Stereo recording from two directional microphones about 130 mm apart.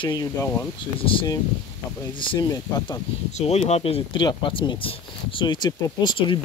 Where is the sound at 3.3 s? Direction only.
55° left (ahead or behind); by 6.4 s 35° left (ahead or behind).